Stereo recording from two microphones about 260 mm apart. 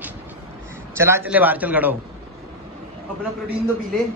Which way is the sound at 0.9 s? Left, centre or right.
Centre.